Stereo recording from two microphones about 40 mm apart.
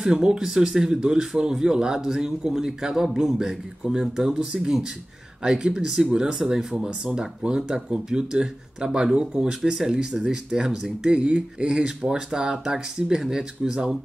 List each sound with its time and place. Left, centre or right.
0.0 s speech: centre